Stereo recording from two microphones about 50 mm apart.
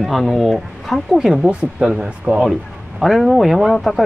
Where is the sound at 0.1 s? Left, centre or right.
Centre.